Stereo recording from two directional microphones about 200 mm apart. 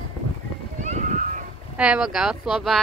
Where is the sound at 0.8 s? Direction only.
35° right (ahead or behind).